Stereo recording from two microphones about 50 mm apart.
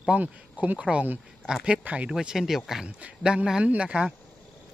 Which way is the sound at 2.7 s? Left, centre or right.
Centre.